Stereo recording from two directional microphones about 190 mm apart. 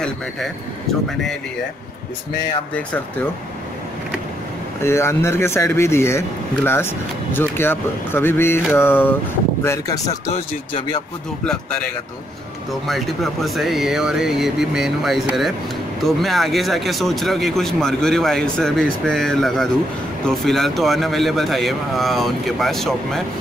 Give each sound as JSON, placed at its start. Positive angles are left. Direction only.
{"t": 4.8, "sound": "speech", "side_deg": 15}
{"t": 10.3, "sound": "speech", "side_deg": 25}
{"t": 12.8, "sound": "speech", "side_deg": 0}